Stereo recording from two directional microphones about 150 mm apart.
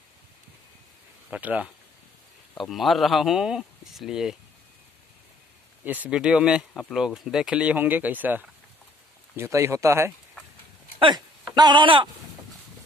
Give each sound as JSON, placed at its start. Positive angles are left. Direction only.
{"t": 1.3, "sound": "speech", "side_deg": -10}
{"t": 2.5, "sound": "speech", "side_deg": 0}
{"t": 5.9, "sound": "speech", "side_deg": -10}
{"t": 11.0, "sound": "speech", "side_deg": -30}